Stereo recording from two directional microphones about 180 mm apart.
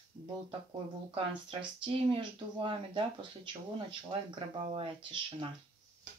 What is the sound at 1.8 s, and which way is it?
Speech, 30° right (ahead or behind).